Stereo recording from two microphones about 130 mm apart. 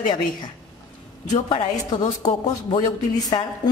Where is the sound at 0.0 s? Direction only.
35° left (ahead or behind).